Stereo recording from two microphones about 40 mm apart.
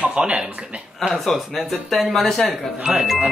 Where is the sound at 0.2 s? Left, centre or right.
Right.